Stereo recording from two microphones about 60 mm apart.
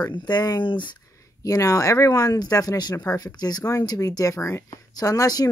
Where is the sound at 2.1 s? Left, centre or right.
Left.